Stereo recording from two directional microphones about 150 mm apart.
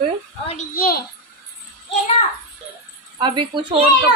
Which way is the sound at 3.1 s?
30° right (ahead or behind).